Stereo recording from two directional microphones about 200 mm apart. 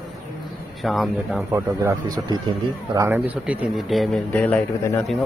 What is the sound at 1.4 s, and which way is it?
A man's voice, 15° right (ahead or behind).